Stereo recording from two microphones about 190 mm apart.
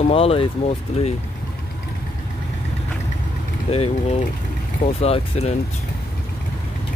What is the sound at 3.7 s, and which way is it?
Speech, 35° left (ahead or behind).